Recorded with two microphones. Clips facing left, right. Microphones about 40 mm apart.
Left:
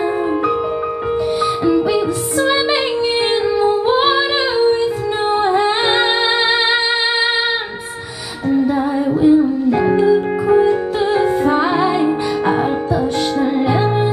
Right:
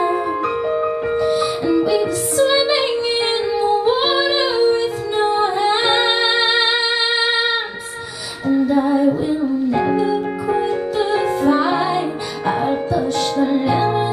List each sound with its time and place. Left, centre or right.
3.5 s music: left
5.2 s music: left
8.7 s music: centre
11.1 s music: left